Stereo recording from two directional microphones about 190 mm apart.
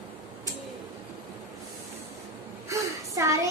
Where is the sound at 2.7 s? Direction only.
15° right (ahead or behind).